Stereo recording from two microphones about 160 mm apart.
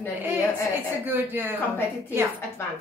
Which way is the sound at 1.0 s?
10° right (ahead or behind).